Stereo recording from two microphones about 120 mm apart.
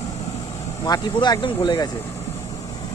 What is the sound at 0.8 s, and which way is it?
Speech, 35° left (ahead or behind).